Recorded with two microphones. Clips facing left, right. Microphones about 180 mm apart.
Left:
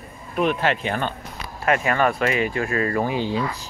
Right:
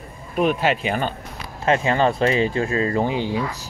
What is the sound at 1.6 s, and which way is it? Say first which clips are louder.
Speech: right 2 dB; 25° right (ahead or behind).